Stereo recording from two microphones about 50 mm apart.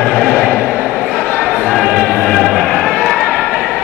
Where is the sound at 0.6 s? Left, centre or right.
Centre.